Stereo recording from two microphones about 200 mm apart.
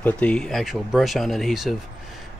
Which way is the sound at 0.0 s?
5° left (ahead or behind).